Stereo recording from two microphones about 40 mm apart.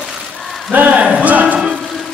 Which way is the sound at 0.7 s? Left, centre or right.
Right.